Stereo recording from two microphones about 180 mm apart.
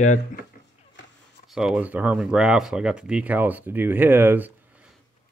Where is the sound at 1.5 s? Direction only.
Centre (ahead or behind).